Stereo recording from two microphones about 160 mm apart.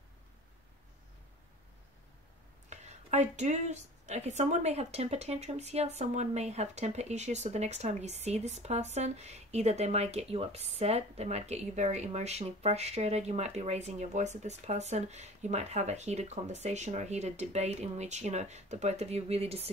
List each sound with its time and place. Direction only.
2.7 s speech: 45° right (ahead or behind)